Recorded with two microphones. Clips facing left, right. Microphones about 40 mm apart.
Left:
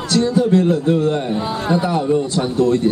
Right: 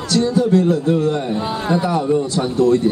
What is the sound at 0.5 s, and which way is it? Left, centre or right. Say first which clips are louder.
Speech: even; left.